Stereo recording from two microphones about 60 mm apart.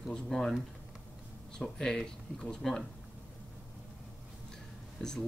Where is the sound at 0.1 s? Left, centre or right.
Centre.